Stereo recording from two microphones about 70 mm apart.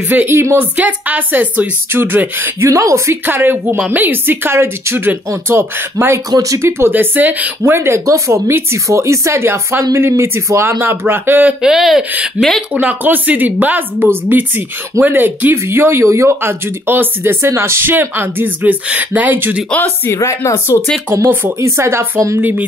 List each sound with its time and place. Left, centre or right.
0.3 s speech: right
0.7 s speech: right
2.6 s speech: right
3.3 s speech: right
6.3 s speech: right
6.9 s speech: right
7.6 s speech: right
11.6 s speech: centre
12.7 s speech: right
20.1 s speech: left
21.1 s speech: right
21.5 s speech: right
22.4 s speech: right